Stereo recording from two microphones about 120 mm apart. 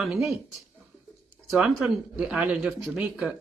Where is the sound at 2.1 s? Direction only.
10° right (ahead or behind).